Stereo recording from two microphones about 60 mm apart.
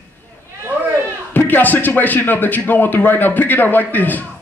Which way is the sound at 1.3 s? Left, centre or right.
Left.